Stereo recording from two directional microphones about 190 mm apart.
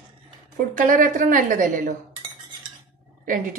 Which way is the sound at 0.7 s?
45° right (ahead or behind).